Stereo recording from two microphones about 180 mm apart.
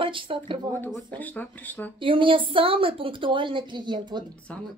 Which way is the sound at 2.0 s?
30° right (ahead or behind).